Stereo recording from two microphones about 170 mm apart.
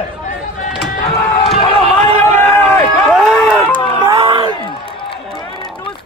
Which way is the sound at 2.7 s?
Centre (ahead or behind).